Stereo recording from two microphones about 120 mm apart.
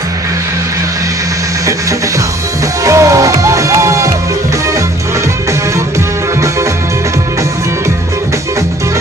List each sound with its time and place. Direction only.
2.8 s music: 25° right (ahead or behind)